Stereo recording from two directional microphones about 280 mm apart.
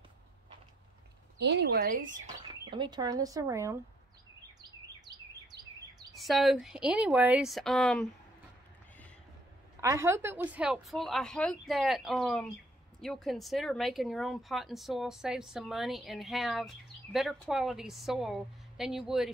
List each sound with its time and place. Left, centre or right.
1.4 s speech: right
2.7 s speech: centre
4.6 s bird: centre
6.1 s speech: centre
9.8 s speech: centre